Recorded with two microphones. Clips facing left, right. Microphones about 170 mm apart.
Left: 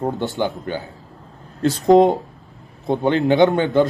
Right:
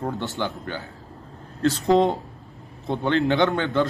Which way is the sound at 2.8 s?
15° left (ahead or behind).